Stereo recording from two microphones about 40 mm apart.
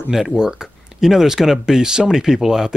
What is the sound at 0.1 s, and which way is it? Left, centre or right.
Speech, centre.